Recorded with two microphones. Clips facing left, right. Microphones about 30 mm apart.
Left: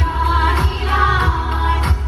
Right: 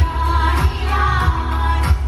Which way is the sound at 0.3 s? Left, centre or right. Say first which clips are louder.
Left 2 dB; left.